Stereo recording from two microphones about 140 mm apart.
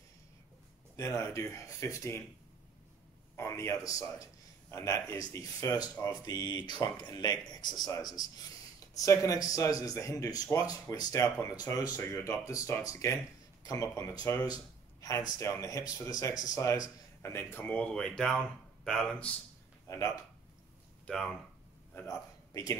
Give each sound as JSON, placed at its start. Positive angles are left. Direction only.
{"t": 0.9, "sound": "speech", "side_deg": 20}
{"t": 3.3, "sound": "speech", "side_deg": 20}
{"t": 21.1, "sound": "speech", "side_deg": 5}
{"t": 21.9, "sound": "a man's voice", "side_deg": 20}